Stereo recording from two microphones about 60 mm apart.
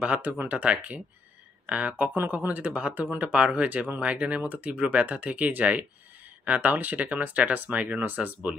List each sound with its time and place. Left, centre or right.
0.0 s speech: right